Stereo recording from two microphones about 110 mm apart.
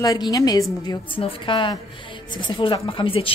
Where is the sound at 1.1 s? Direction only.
50° left (ahead or behind).